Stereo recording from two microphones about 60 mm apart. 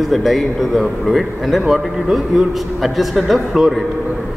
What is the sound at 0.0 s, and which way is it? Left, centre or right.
A man's voice, centre.